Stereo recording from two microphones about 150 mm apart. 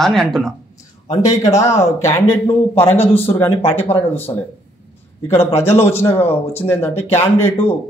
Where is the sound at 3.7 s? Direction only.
15° left (ahead or behind).